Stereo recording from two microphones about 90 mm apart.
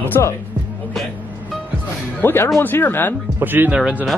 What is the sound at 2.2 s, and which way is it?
Speech, 25° left (ahead or behind).